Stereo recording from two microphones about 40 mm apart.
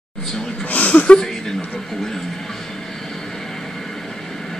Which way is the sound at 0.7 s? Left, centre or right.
Left.